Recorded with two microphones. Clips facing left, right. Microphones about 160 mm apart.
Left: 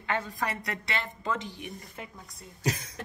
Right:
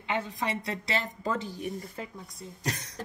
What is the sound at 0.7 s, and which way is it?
Speech, 35° right (ahead or behind).